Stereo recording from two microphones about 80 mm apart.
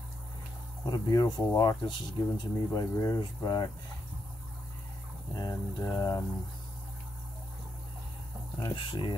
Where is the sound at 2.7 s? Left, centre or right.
Left.